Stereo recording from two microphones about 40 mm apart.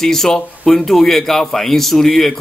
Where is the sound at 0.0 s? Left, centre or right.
Centre.